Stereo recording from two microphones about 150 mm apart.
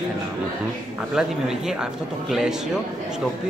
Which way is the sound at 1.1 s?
5° right (ahead or behind).